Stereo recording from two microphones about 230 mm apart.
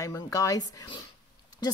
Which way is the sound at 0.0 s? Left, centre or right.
Centre.